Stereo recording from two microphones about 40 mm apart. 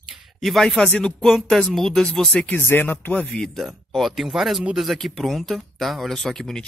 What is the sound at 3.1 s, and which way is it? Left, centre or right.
Speech, left.